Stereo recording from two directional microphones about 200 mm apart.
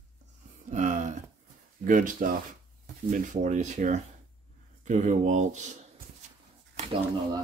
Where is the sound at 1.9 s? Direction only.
40° right (ahead or behind).